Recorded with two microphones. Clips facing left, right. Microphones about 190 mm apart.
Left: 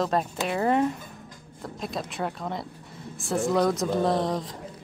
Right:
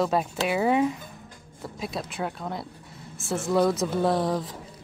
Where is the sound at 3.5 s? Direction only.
Centre (ahead or behind).